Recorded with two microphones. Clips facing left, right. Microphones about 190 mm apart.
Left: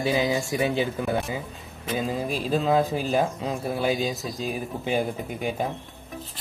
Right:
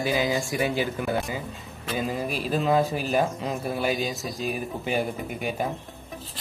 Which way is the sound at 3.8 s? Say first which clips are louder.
Left 3 dB; 20° left (ahead or behind).